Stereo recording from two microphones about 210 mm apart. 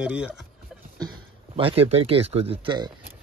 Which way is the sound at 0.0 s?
5° right (ahead or behind).